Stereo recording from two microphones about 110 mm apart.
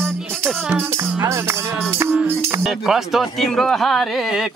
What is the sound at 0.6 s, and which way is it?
Music, 20° right (ahead or behind).